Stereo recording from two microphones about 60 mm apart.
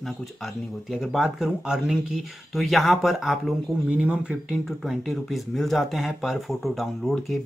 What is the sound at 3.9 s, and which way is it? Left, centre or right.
Speech, centre.